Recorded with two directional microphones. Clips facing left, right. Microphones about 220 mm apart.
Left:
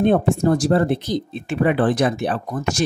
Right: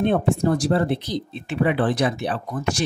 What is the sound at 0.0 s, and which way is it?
Speech, 45° left (ahead or behind).